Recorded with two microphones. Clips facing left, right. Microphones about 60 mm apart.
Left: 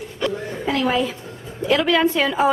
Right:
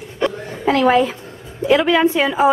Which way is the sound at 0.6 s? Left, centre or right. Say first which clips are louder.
Right 7 dB; right.